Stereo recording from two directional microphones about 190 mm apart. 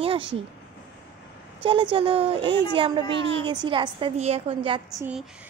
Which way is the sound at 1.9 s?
30° right (ahead or behind).